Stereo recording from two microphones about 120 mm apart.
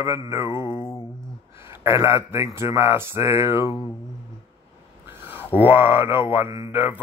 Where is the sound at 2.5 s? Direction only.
25° right (ahead or behind).